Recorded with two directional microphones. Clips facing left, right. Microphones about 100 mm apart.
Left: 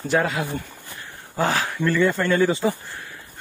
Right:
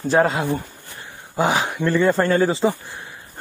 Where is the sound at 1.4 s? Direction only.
15° right (ahead or behind).